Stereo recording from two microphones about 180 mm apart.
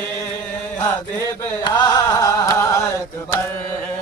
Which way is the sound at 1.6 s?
20° left (ahead or behind).